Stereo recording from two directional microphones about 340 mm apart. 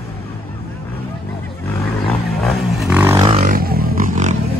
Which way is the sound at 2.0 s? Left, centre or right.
Centre.